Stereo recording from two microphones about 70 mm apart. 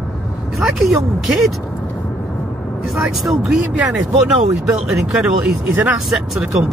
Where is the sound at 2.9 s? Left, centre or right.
Centre.